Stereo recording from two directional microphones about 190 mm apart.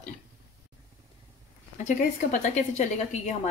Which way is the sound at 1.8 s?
40° left (ahead or behind).